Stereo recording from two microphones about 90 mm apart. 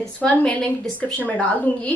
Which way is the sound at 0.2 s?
15° left (ahead or behind).